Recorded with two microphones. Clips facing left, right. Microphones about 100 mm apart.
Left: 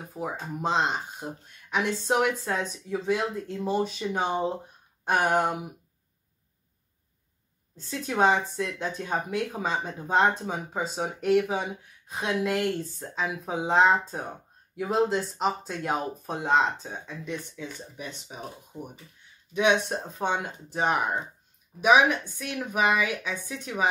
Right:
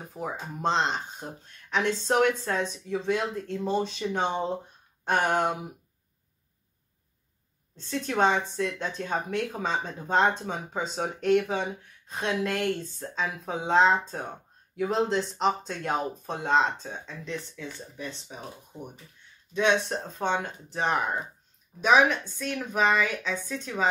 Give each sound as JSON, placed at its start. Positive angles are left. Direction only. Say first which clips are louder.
{"t": 0.2, "sound": "speech", "louder": "left 2 dB", "side_deg": 15}
{"t": 7.7, "sound": "speech", "louder": "right 1 dB", "side_deg": 5}